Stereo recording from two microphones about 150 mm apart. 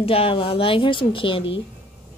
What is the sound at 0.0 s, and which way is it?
A woman's voice, 40° left (ahead or behind).